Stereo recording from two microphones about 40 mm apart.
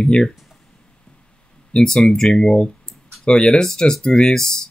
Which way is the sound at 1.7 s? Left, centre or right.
Centre.